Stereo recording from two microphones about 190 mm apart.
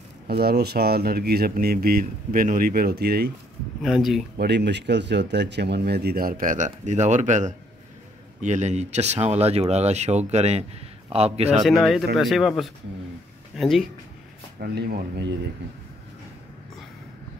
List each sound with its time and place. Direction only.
0.3 s speech: 55° right (ahead or behind)
3.8 s speech: centre (ahead or behind)
4.4 s speech: 65° right (ahead or behind); by 11.6 s 35° right (ahead or behind)
11.6 s speech: centre (ahead or behind)
14.6 s speech: 55° right (ahead or behind)